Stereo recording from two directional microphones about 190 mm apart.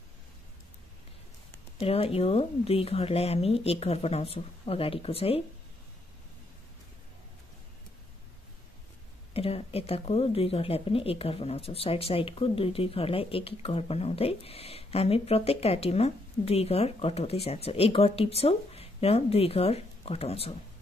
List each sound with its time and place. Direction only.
1.8 s speech: 30° left (ahead or behind)
9.3 s speech: 30° left (ahead or behind)